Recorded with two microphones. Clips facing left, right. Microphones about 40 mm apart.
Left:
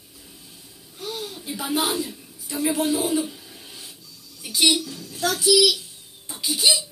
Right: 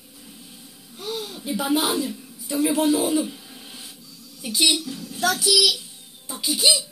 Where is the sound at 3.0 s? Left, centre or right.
Right.